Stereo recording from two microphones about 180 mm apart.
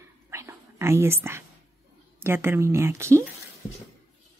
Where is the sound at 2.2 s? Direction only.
15° right (ahead or behind).